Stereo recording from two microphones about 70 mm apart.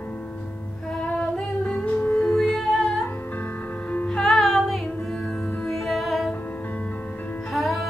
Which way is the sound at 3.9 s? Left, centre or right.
Centre.